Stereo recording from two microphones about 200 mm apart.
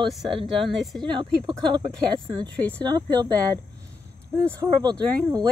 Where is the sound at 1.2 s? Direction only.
20° right (ahead or behind).